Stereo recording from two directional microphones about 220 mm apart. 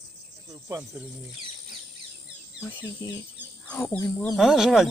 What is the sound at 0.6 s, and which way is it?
Speech, 15° right (ahead or behind).